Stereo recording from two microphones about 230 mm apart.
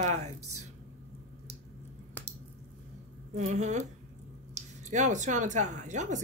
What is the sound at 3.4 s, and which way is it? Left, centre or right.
A woman's voice, right.